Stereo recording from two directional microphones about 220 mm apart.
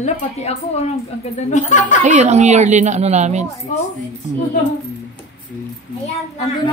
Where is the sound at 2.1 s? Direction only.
30° right (ahead or behind).